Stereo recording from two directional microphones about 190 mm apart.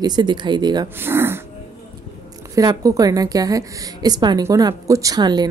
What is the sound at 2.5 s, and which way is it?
A woman's voice, 20° right (ahead or behind).